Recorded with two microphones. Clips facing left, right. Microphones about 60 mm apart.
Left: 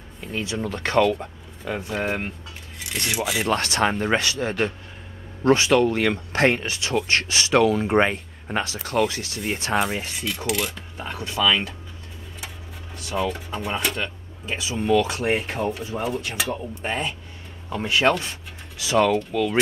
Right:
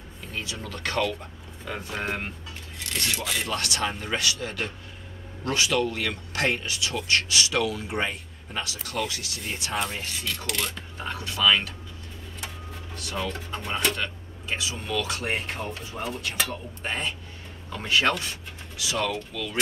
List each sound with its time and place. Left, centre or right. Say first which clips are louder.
0.3 s speech: left 7 dB; left
1.6 s speech: left 5 dB; centre
3.4 s speech: left 10 dB; left
8.6 s speech: left 9 dB; left
9.9 s speech: left 4 dB; centre
11.1 s speech: left 7 dB; left
12.9 s speech: left 6 dB; centre; by 15.1 s left
15.1 s speech: left 6 dB; centre
18.8 s speech: left 9 dB; left